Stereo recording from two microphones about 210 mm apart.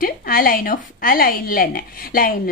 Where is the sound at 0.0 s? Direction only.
45° left (ahead or behind).